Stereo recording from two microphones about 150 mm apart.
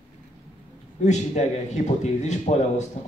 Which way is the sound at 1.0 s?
50° left (ahead or behind).